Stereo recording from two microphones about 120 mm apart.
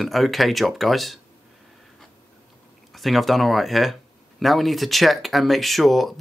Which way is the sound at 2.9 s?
Centre (ahead or behind).